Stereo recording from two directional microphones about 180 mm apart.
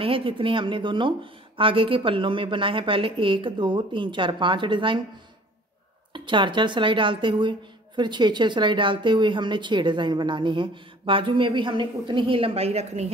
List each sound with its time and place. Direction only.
0.0 s a woman's voice: 30° right (ahead or behind)
6.1 s a woman's voice: 25° right (ahead or behind)